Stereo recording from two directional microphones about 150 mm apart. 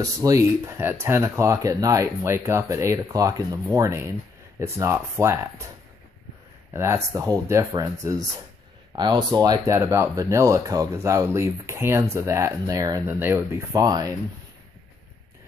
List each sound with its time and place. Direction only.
0.0 s speech: 20° right (ahead or behind)
6.7 s speech: 20° right (ahead or behind)